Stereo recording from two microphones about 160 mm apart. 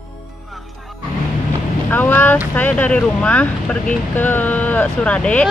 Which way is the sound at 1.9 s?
10° left (ahead or behind).